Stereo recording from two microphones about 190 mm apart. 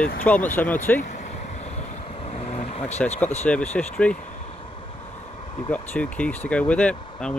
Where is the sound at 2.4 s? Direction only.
35° left (ahead or behind).